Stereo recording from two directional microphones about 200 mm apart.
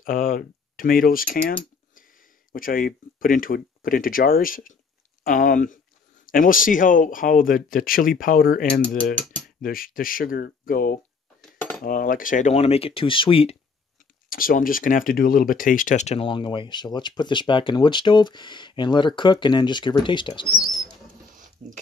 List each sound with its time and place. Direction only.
0.0 s speech: 45° left (ahead or behind)
2.5 s speech: 45° left (ahead or behind)
9.2 s cutlery: centre (ahead or behind)
9.6 s speech: 45° left (ahead or behind)
11.4 s cutlery: centre (ahead or behind)
11.8 s speech: 45° left (ahead or behind); by 13.6 s 30° left (ahead or behind)
14.3 s speech: 45° left (ahead or behind); by 20.4 s 25° left (ahead or behind)
20.6 s bird flight: centre (ahead or behind)